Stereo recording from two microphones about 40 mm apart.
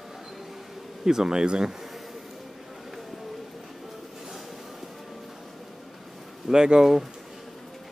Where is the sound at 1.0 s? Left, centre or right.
Centre.